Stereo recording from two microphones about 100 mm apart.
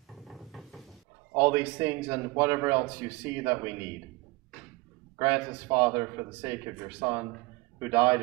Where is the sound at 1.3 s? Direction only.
25° right (ahead or behind).